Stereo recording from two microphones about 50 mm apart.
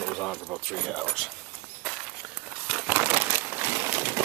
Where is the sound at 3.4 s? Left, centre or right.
Right.